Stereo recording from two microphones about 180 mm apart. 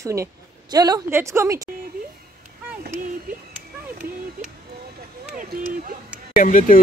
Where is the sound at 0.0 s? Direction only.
15° right (ahead or behind).